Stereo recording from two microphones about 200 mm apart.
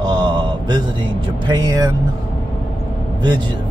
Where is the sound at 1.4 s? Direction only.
20° right (ahead or behind).